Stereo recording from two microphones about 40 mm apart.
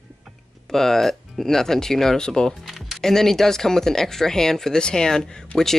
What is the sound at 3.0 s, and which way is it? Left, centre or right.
Speech, centre.